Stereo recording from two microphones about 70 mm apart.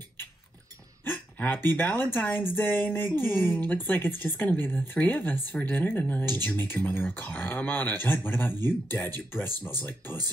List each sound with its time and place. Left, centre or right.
1.1 s speech: left